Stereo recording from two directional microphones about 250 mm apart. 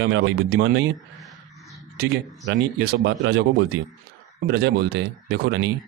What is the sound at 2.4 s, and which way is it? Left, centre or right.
Speech, right.